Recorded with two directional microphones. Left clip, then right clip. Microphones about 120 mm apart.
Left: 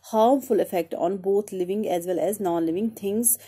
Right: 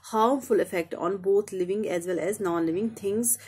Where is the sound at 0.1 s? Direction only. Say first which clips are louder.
Left 3 dB; 25° left (ahead or behind).